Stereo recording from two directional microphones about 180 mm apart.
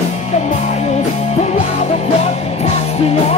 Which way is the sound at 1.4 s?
35° left (ahead or behind).